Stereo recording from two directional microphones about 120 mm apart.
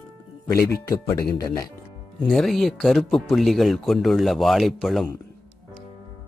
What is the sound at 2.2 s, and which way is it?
Speech, centre (ahead or behind).